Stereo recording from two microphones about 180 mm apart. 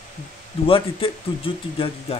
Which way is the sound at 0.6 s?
30° left (ahead or behind).